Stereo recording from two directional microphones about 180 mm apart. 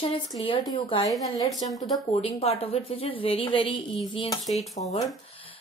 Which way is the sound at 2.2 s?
35° left (ahead or behind).